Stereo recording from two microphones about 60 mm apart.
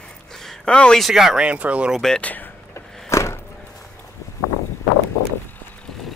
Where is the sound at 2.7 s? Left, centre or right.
Left.